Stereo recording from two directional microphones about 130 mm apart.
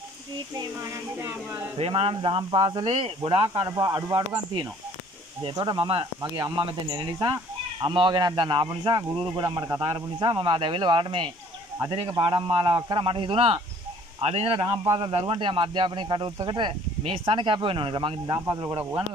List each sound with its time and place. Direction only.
1.2 s speech: 15° right (ahead or behind)
1.8 s speech: 45° right (ahead or behind)
6.2 s speech: 30° right (ahead or behind)
6.5 s speech: 40° right (ahead or behind)
14.8 s speech: 35° right (ahead or behind)